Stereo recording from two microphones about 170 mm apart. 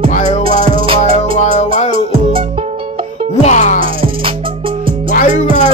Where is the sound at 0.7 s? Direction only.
30° right (ahead or behind).